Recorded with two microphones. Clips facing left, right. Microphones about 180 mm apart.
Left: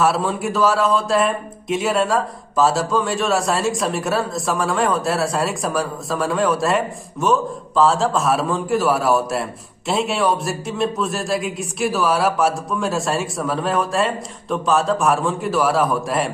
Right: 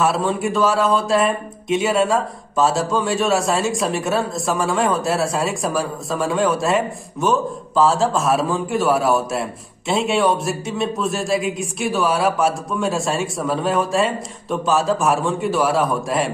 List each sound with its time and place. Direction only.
0.0 s speech: centre (ahead or behind)